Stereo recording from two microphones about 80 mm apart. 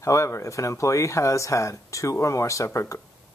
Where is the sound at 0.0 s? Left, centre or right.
Left.